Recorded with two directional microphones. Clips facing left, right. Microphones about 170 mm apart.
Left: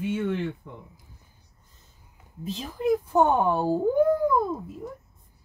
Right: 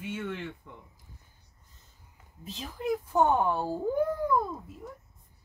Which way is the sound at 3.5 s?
35° left (ahead or behind).